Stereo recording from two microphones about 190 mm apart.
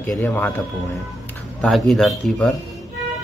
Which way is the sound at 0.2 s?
10° left (ahead or behind).